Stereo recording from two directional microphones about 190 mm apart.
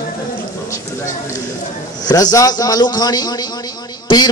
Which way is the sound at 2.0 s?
20° left (ahead or behind).